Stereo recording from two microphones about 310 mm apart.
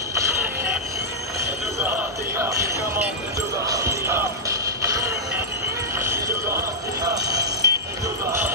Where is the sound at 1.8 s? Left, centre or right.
Centre.